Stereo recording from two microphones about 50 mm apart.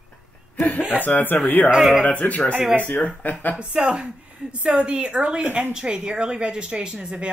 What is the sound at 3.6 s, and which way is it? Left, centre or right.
A woman's voice, right.